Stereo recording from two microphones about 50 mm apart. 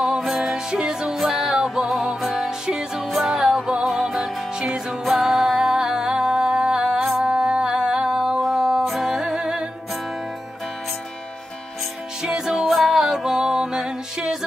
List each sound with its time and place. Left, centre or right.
0.0 s music: centre
2.6 s music: centre
12.2 s music: centre